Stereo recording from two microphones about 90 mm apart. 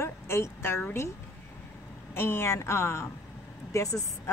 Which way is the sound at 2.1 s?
25° left (ahead or behind).